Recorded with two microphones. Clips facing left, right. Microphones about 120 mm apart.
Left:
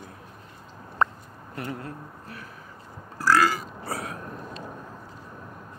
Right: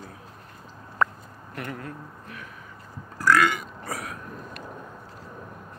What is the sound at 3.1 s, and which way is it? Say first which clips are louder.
Burping: even; 30° left (ahead or behind).